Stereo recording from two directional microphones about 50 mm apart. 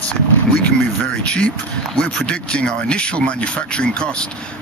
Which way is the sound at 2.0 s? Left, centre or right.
Left.